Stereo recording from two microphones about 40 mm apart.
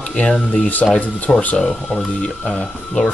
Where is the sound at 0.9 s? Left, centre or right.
Left.